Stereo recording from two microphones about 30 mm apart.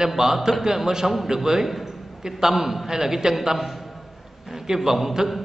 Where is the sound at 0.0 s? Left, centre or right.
Centre.